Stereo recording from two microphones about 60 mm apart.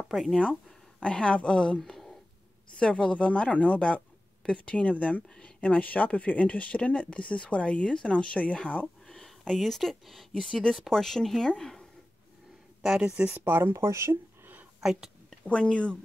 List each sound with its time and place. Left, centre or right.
0.1 s speech: centre
0.9 s a woman's voice: centre
2.8 s speech: centre
10.4 s speech: centre
13.0 s speech: right
13.4 s speech: right
13.8 s speech: right
14.8 s a woman's voice: centre
15.4 s speech: left